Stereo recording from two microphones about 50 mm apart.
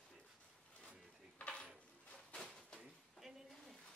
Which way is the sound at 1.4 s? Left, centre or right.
Left.